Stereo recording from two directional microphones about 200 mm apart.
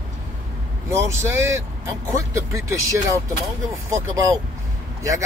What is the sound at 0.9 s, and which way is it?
Speech, 15° right (ahead or behind).